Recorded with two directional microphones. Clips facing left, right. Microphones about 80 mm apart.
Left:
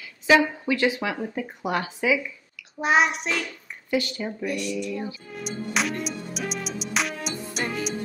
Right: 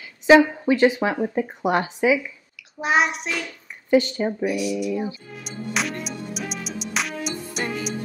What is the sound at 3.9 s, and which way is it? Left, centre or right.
Speech, right.